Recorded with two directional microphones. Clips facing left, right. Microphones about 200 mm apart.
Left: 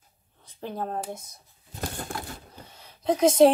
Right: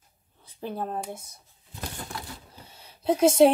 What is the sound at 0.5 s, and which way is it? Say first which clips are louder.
Speech: even; 10° right (ahead or behind).